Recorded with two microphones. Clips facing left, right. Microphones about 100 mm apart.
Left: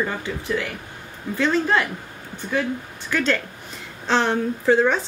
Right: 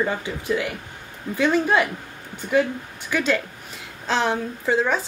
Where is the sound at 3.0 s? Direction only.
10° right (ahead or behind).